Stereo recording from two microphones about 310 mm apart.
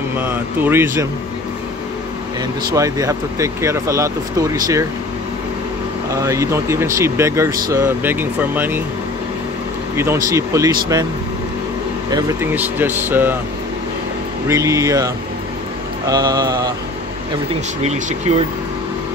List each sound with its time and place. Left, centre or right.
0.2 s speech: centre
2.7 s speech: centre
6.1 s speech: centre
9.9 s speech: centre
12.1 s speech: centre
14.5 s speech: centre
16.1 s speech: centre